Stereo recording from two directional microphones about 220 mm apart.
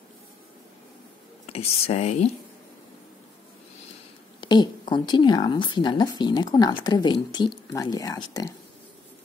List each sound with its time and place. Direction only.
1.4 s speech: 25° left (ahead or behind)
4.4 s speech: 20° left (ahead or behind)